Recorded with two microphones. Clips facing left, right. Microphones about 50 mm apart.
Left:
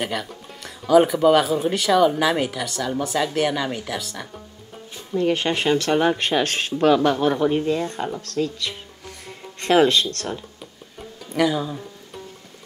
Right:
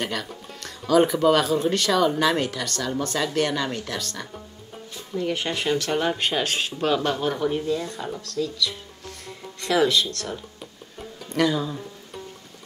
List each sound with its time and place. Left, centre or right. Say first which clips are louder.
0.0 s speech: left 2 dB; centre
5.1 s speech: left 5 dB; left
11.0 s music: left 2 dB; centre